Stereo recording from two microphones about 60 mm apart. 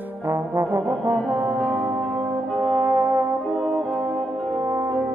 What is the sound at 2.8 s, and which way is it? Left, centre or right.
Brass instrument, right.